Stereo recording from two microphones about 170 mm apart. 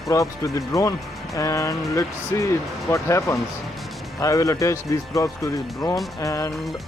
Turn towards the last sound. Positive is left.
turn(degrees=20)  # may be behind; listen again after turning